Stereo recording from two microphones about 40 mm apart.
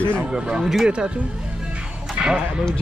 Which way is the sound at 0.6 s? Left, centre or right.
Centre.